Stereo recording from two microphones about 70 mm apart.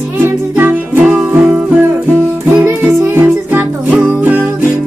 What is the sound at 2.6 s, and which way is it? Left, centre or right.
Music, right.